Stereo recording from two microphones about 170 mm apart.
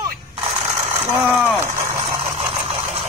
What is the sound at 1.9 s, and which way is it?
Engine, 40° right (ahead or behind).